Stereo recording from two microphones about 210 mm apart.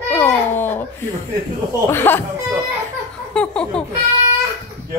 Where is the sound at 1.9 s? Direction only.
10° left (ahead or behind).